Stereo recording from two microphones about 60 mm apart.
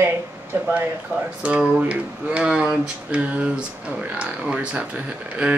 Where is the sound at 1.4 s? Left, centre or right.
Right.